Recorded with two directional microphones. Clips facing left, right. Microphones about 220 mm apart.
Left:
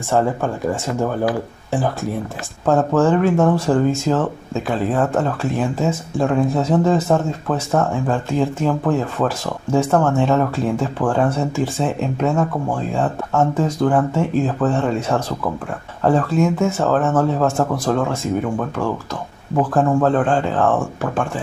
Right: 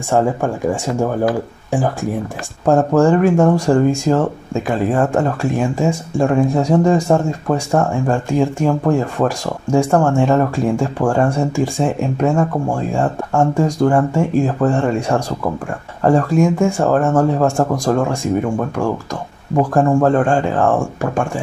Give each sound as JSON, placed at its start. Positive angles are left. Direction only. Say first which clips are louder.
{"t": 0.1, "sound": "speech", "louder": "right 2 dB", "side_deg": -15}
{"t": 19.5, "sound": "speech", "louder": "right 3 dB", "side_deg": -10}